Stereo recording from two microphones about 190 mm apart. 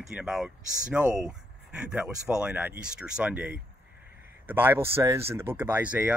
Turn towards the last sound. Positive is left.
turn(degrees=-10)  # may be behind; listen again after turning